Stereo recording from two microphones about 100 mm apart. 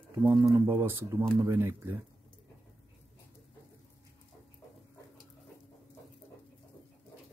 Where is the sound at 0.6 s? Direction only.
20° right (ahead or behind).